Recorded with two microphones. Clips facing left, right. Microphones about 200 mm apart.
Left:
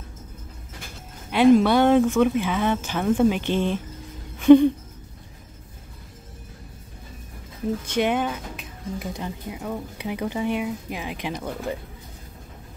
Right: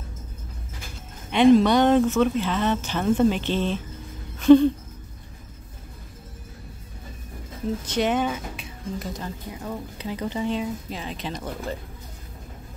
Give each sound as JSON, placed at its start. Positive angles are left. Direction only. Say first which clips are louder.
{"t": 1.3, "sound": "speech", "louder": "even", "side_deg": 5}
{"t": 4.4, "sound": "a sound", "louder": "left 1 dB", "side_deg": 15}
{"t": 7.8, "sound": "speech", "louder": "even", "side_deg": 10}